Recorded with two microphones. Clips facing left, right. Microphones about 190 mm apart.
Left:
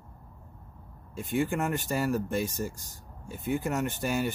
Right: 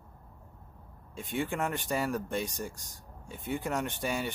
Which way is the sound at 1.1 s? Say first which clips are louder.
Left 4 dB; centre (ahead or behind).